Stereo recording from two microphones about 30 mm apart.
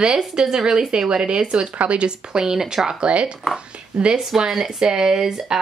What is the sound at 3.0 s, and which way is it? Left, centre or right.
Speech, right.